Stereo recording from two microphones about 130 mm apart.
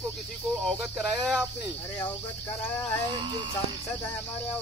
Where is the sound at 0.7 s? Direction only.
Centre (ahead or behind).